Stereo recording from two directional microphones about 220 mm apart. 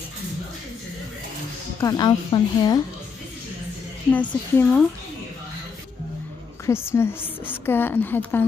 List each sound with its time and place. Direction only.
1.8 s a woman's voice: 15° left (ahead or behind)
4.1 s a woman's voice: 5° left (ahead or behind)
6.6 s a woman's voice: 10° left (ahead or behind)